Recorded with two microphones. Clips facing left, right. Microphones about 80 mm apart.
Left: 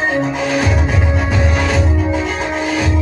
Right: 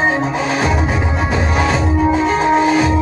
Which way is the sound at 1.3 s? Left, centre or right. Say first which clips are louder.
Right 2 dB; centre.